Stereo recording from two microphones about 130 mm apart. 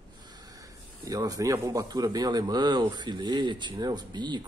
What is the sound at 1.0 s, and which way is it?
Speech, 30° right (ahead or behind).